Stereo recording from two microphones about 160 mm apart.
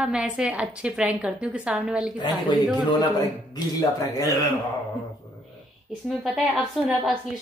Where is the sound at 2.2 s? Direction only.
30° left (ahead or behind).